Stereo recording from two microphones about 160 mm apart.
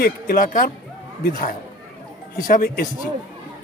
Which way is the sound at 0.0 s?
60° left (ahead or behind).